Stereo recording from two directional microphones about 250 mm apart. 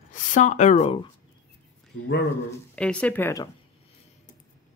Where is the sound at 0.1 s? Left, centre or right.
Left.